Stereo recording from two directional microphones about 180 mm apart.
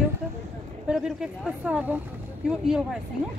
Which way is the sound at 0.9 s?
5° right (ahead or behind).